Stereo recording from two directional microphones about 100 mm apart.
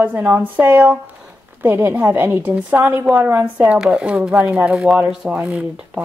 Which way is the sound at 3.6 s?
10° right (ahead or behind).